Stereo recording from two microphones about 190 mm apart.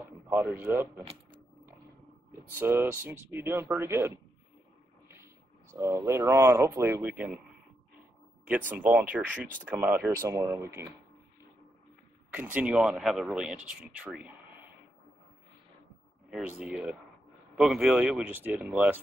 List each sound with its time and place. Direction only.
0.3 s speech: 10° right (ahead or behind)
2.6 s speech: 10° right (ahead or behind)
5.7 s speech: 15° right (ahead or behind)
8.5 s speech: 10° right (ahead or behind)
12.5 s speech: 5° right (ahead or behind)
16.3 s speech: 5° right (ahead or behind)